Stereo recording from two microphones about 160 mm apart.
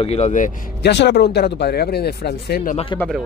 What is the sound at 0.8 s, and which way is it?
Speech, 90° left.